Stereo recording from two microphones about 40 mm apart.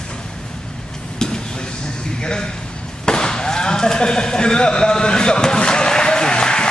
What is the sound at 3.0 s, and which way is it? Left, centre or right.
Chop, centre.